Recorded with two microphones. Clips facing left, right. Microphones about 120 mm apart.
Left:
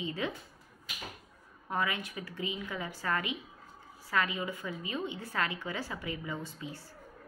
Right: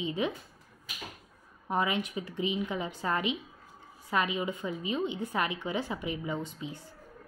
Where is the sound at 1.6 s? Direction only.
20° right (ahead or behind).